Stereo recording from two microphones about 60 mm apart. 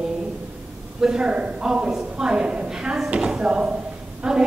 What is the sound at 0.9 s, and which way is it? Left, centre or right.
A woman's voice, centre.